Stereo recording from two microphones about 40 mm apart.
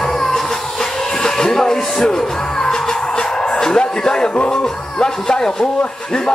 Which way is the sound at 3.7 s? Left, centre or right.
Centre.